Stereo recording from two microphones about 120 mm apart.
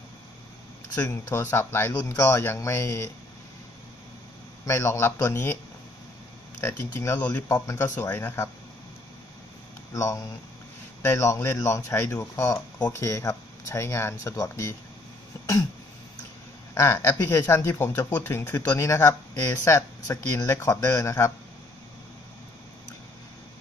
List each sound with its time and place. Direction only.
1.0 s speech: 20° left (ahead or behind)
4.6 s speech: 25° left (ahead or behind)
6.6 s speech: 20° left (ahead or behind)
7.2 s speech: 10° left (ahead or behind)
7.4 s speech: 30° left (ahead or behind)
8.0 s speech: 15° left (ahead or behind)
9.9 s speech: 25° left (ahead or behind)
15.3 s throat clearing: 25° left (ahead or behind)
16.7 s speech: 25° left (ahead or behind)